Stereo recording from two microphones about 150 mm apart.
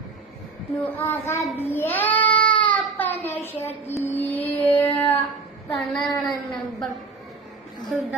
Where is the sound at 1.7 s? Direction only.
15° left (ahead or behind).